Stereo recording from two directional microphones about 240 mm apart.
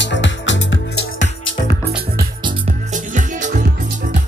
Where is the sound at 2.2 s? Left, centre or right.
Right.